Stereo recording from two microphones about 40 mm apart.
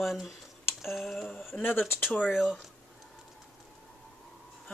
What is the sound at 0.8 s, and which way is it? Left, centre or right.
Speech, centre.